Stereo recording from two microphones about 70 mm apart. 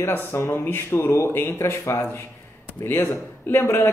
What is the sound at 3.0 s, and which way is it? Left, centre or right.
Speech, left.